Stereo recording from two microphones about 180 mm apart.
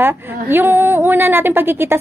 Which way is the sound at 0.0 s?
10° right (ahead or behind).